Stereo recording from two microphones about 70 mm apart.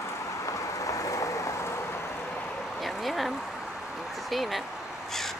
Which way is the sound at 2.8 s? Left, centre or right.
Centre.